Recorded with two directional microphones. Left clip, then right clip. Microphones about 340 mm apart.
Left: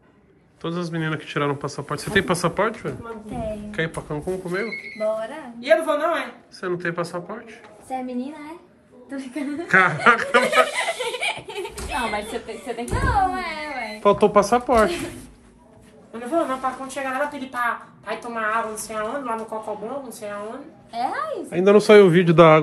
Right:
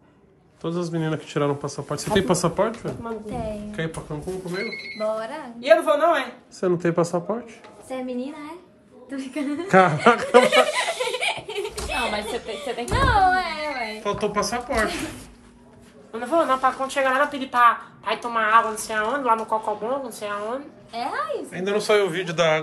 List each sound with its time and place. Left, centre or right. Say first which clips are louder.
0.6 s speech: right 1 dB; centre
6.6 s speech: right 4 dB; centre
7.9 s a woman's voice: left 1 dB; centre
9.7 s speech: even; centre
10.4 s speech: right 1 dB; centre
14.0 s speech: left 10 dB; centre
14.8 s speech: left 5 dB; centre
20.9 s speech: left 1 dB; centre